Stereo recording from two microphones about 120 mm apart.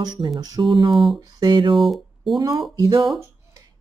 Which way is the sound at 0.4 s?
30° right (ahead or behind).